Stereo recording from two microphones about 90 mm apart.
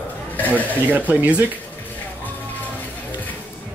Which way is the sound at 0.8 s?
20° right (ahead or behind).